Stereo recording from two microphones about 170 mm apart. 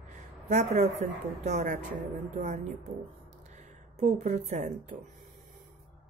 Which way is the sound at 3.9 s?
40° right (ahead or behind).